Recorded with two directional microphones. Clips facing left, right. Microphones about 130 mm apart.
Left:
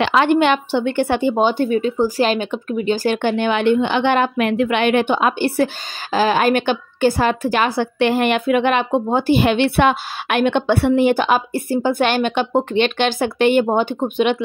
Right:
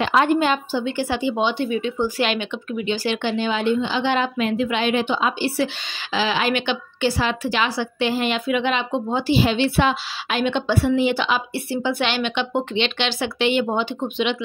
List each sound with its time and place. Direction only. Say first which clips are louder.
0.0 s a woman's voice: left 3 dB; 80° left; by 14.4 s 50° left (ahead or behind)